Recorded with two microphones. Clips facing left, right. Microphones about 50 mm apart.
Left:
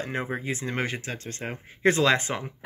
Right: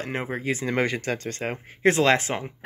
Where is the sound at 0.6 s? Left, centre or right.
Right.